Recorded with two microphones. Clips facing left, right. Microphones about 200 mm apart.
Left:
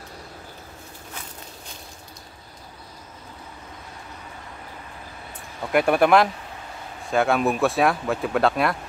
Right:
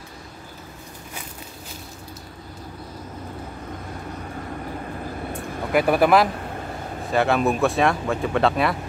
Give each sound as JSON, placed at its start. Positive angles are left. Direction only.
{"t": 5.7, "sound": "speech", "side_deg": 0}